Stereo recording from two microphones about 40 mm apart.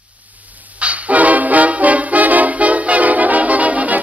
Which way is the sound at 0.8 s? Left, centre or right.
Right.